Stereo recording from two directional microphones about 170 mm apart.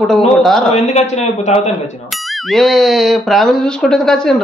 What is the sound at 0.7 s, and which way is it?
Speech, 40° left (ahead or behind).